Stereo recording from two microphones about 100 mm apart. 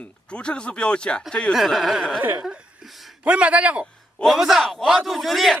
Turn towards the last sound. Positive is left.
turn(degrees=0)  # may be behind; listen again after turning